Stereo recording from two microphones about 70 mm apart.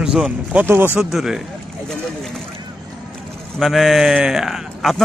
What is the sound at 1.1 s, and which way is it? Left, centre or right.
Speech, centre.